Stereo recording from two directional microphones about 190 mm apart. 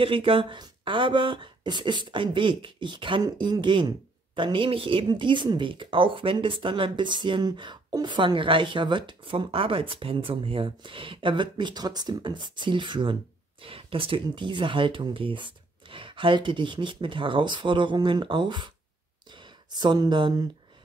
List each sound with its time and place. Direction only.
0.0 s speech: 30° right (ahead or behind)